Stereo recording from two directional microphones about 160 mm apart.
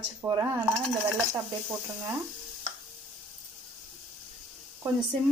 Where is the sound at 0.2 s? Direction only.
20° right (ahead or behind).